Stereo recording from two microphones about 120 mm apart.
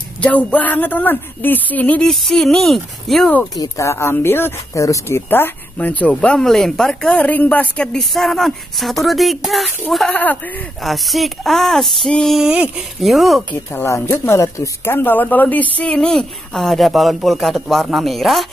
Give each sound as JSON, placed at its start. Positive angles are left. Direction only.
{"t": 0.2, "sound": "speech", "side_deg": 10}
{"t": 3.5, "sound": "speech", "side_deg": 30}
{"t": 10.1, "sound": "speech", "side_deg": 15}
{"t": 10.8, "sound": "speech", "side_deg": 0}
{"t": 13.5, "sound": "speech", "side_deg": 20}